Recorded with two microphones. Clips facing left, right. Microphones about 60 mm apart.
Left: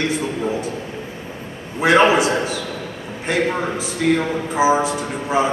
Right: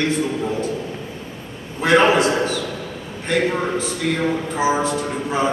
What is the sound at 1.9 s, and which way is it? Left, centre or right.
A man's voice, centre.